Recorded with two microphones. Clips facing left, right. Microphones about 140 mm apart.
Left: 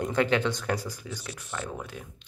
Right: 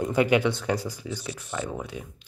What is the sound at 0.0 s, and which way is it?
Speech, 10° right (ahead or behind).